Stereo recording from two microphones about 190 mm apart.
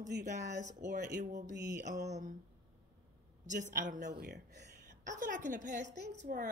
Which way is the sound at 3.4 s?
40° right (ahead or behind).